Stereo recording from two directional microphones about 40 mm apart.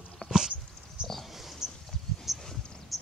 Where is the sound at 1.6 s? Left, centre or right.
Centre.